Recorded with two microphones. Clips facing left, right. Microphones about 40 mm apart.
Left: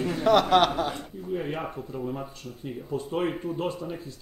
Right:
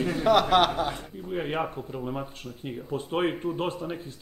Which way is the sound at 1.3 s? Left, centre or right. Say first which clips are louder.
Right 1 dB; right.